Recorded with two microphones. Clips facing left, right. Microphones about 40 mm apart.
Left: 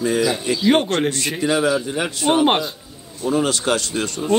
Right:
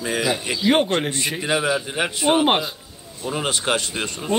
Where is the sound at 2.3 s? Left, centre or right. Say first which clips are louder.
Left 2 dB; centre.